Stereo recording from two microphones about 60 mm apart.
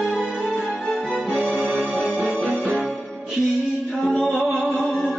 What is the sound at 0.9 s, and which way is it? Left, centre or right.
Music, centre.